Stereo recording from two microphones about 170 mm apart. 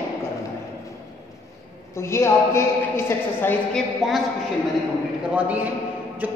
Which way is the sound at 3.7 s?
Centre (ahead or behind).